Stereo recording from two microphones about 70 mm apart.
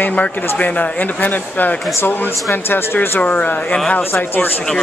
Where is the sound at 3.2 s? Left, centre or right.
Left.